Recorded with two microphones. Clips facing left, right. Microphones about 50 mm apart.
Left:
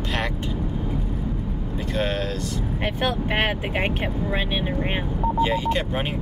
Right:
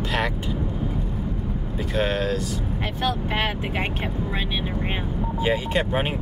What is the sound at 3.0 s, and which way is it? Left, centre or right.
Speech, left.